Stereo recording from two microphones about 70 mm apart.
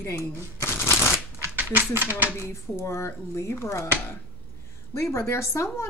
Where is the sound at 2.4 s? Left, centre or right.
Left.